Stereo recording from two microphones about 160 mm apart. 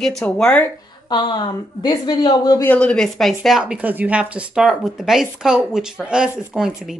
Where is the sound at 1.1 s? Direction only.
25° left (ahead or behind).